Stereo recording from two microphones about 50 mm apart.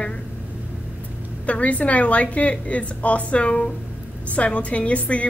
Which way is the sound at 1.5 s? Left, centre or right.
Left.